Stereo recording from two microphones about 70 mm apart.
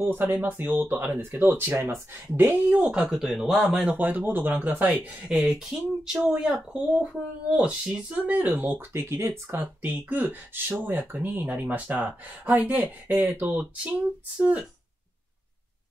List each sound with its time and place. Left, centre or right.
0.0 s speech: right
2.9 s speech: centre
3.8 s speech: right
5.3 s speech: centre
6.2 s speech: centre
8.9 s speech: right